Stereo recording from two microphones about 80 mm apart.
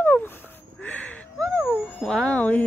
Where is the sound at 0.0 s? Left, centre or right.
Left.